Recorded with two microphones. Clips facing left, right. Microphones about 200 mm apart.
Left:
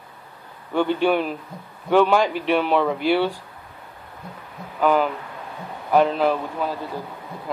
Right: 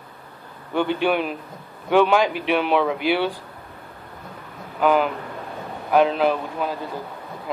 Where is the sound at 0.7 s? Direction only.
15° right (ahead or behind).